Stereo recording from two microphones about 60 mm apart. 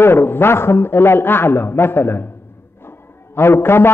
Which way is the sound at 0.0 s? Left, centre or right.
Left.